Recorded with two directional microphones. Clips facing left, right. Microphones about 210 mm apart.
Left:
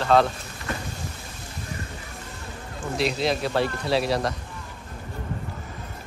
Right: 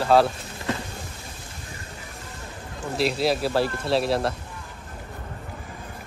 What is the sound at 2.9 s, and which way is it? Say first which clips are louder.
Speech: right 2 dB; 5° right (ahead or behind).